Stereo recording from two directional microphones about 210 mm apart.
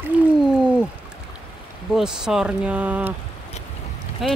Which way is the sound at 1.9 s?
Centre (ahead or behind).